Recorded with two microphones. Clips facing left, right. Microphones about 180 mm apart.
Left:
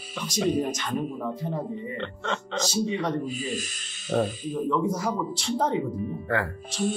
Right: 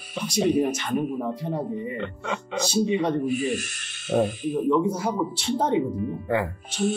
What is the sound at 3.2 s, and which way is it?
Speech, 60° right (ahead or behind).